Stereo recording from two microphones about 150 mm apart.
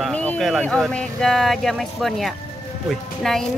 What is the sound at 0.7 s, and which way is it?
Speech, 5° left (ahead or behind).